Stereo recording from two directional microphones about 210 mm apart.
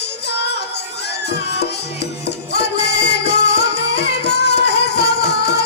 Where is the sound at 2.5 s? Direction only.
55° left (ahead or behind).